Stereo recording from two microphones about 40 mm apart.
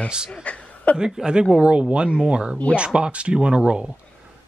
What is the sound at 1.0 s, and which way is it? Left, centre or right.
Speech, right.